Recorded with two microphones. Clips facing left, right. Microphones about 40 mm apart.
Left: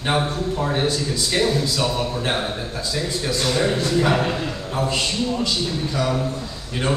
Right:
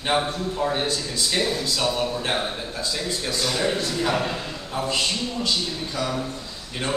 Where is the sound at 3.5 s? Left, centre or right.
Centre.